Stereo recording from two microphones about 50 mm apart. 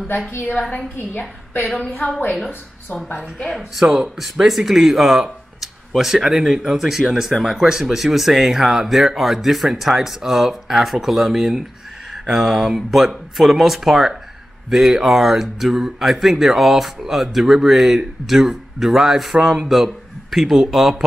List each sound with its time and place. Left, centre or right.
0.9 s a woman's voice: left
3.8 s speech: centre